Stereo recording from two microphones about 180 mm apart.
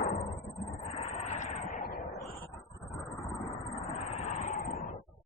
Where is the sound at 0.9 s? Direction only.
40° left (ahead or behind); by 2.4 s 55° left (ahead or behind).